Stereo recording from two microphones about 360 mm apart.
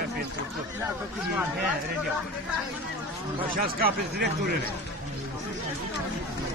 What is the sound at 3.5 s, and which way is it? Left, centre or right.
Speech, right.